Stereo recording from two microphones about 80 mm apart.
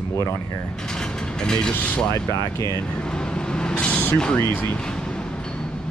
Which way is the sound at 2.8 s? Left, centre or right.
Centre.